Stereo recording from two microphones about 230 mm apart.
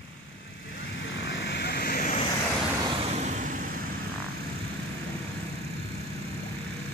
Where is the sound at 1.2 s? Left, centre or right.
Left.